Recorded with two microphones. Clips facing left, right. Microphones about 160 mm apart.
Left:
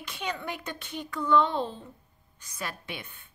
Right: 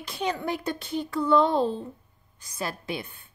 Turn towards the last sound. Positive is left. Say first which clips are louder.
# right 7 dB
turn(degrees=-35)  # may be behind; listen again after turning